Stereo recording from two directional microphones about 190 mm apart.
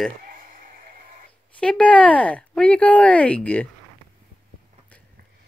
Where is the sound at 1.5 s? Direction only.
5° left (ahead or behind).